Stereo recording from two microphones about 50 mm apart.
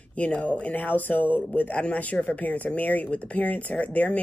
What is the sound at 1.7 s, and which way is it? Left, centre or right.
Speech, left.